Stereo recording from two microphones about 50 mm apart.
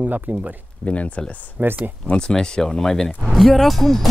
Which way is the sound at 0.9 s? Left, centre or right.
Left.